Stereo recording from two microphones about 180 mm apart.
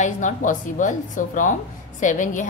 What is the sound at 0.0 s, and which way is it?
A woman's voice, 45° left (ahead or behind).